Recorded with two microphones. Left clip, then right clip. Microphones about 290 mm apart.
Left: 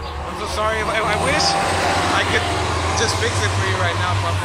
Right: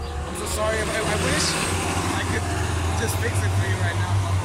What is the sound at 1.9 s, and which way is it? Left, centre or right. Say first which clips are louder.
Vehicle: left 8 dB; left.